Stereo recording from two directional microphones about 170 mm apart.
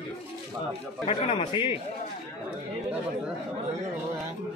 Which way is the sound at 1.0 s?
35° left (ahead or behind).